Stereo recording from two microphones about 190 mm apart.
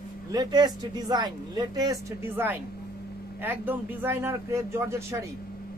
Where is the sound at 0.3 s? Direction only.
20° right (ahead or behind).